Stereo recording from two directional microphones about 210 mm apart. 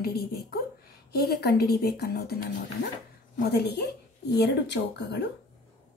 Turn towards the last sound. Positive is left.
turn(degrees=55)  # may be behind; listen again after turning